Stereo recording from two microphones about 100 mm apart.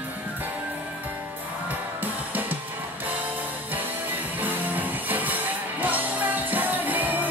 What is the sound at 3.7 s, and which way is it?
Music, 15° right (ahead or behind).